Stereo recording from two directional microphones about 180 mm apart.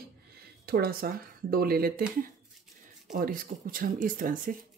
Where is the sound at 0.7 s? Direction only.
60° right (ahead or behind).